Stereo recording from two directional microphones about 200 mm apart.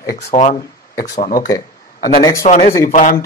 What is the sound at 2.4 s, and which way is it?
Speech, 35° left (ahead or behind).